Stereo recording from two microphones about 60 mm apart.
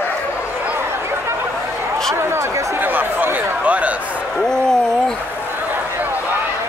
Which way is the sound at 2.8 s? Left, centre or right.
Right.